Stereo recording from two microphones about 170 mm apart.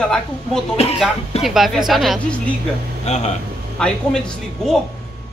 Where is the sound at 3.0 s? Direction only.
40° left (ahead or behind).